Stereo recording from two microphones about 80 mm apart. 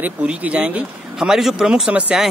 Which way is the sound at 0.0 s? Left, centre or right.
Centre.